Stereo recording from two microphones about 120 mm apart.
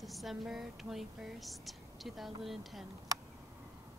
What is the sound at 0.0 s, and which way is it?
Speech, centre (ahead or behind).